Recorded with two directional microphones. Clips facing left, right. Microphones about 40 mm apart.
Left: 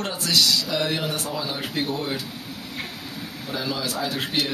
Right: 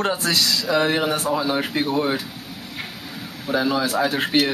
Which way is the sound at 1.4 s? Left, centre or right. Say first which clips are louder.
Right 6 dB; right.